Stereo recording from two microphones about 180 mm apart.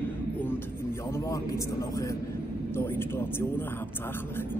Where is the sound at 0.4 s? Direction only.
10° left (ahead or behind).